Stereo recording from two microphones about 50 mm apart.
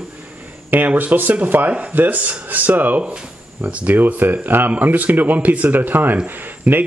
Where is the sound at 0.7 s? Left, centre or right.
Right.